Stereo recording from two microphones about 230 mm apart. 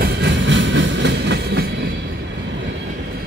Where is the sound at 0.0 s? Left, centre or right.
Right.